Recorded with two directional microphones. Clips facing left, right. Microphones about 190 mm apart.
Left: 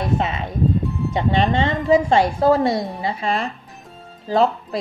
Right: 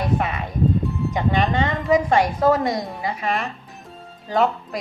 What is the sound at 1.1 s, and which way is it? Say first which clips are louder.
A woman's voice: left 3 dB; 25° left (ahead or behind).